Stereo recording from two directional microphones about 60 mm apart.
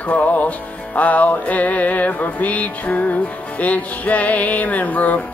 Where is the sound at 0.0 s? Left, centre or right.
Left.